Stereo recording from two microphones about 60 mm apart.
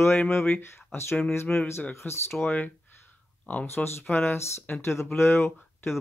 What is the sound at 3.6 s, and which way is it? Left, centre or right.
Speech, left.